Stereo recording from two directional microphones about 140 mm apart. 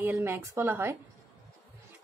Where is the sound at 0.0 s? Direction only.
15° right (ahead or behind).